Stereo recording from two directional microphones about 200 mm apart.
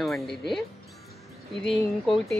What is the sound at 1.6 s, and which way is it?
Speech, centre (ahead or behind).